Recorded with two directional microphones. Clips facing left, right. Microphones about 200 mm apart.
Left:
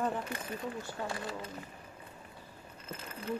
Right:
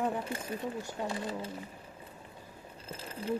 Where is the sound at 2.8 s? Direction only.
30° right (ahead or behind).